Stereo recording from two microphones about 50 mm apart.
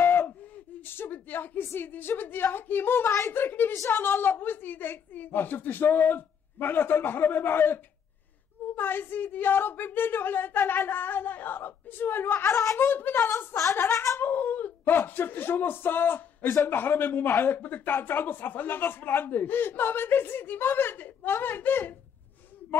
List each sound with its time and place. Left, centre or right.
0.0 s gasp: left
0.8 s a sound: left
1.8 s speech: left
3.1 s speech: left
3.3 s speech: left
12.4 s speech: left
12.7 s speech: left
13.7 s speech: left
14.2 s speech: left